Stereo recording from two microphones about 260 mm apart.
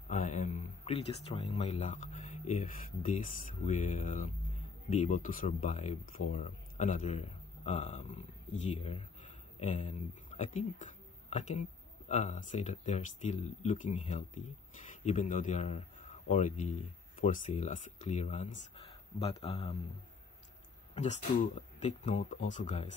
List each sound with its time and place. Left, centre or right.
0.1 s a man's voice: left
20.9 s speech: left